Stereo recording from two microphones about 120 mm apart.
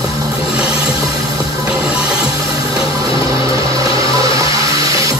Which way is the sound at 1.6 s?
50° left (ahead or behind).